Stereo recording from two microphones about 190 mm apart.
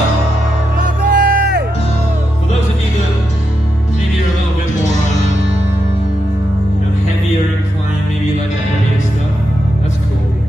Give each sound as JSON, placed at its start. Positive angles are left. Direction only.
{"t": 0.7, "sound": "music", "side_deg": -55}